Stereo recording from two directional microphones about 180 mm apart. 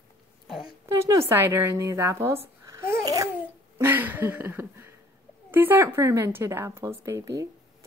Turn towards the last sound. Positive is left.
turn(degrees=-15)  # may be behind; listen again after turning